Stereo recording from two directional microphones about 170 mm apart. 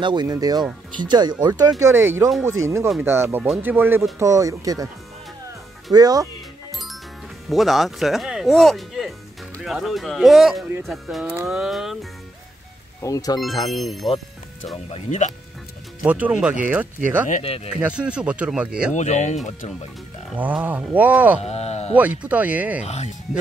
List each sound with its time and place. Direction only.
0.0 s speech: 25° right (ahead or behind)
5.9 s speech: 25° right (ahead or behind)
7.4 s speech: centre (ahead or behind)
13.0 s speech: 20° left (ahead or behind)
13.4 s speech: centre (ahead or behind)
14.9 s speech: 40° left (ahead or behind)
16.1 s speech: 10° right (ahead or behind)
18.9 s speech: 40° left (ahead or behind)
20.3 s speech: 10° right (ahead or behind)
21.4 s speech: 40° left (ahead or behind)
22.2 s speech: 10° right (ahead or behind)
22.8 s speech: 40° left (ahead or behind)